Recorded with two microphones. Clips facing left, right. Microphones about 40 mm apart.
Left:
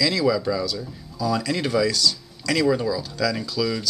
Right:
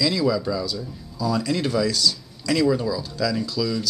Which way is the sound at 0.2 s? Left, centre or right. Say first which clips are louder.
Left 1 dB; centre.